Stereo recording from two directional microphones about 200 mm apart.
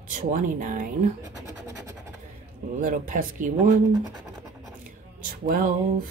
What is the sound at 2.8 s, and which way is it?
Speech, 40° right (ahead or behind).